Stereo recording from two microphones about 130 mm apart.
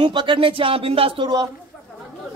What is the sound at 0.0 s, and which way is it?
Speech, 40° right (ahead or behind).